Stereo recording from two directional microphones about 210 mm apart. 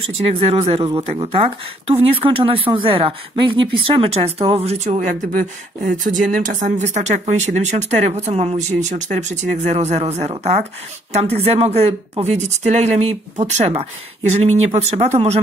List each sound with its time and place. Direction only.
0.1 s a woman's voice: 30° right (ahead or behind)